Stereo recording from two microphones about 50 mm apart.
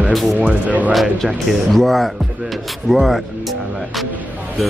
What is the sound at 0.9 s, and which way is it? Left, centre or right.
Speech, centre.